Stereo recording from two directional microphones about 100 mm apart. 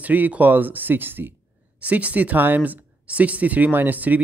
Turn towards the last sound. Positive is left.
turn(degrees=-15)  # may be behind; listen again after turning